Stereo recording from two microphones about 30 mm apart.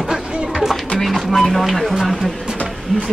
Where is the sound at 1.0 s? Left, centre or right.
Centre.